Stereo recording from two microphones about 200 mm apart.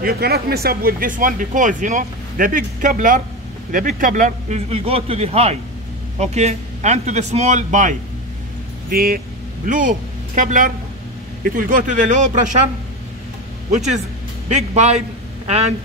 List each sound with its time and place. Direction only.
0.0 s a man's voice: 50° right (ahead or behind)
8.9 s a man's voice: 45° right (ahead or behind)
13.7 s a man's voice: 35° right (ahead or behind)